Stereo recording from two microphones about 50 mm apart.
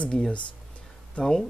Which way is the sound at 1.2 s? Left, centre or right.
Centre.